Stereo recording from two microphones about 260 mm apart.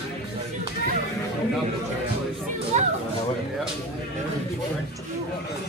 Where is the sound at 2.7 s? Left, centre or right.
Right.